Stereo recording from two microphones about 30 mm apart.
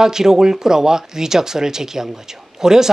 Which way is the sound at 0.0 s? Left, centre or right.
Centre.